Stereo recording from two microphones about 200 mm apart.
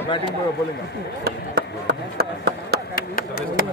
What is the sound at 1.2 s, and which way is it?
Chop, 55° right (ahead or behind).